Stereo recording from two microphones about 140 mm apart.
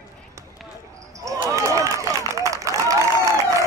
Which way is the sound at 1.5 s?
20° right (ahead or behind).